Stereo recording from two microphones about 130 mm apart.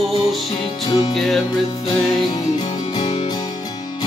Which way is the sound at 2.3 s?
35° left (ahead or behind).